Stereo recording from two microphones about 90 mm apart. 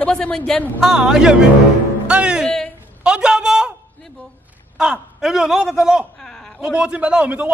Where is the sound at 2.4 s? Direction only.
5° left (ahead or behind).